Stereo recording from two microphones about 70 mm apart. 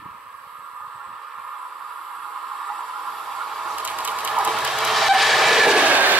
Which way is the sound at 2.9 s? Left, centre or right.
Centre.